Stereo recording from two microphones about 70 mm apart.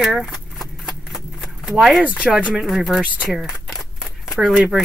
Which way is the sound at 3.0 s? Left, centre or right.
Centre.